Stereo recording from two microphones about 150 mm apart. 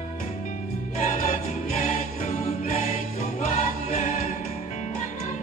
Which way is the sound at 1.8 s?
65° left (ahead or behind).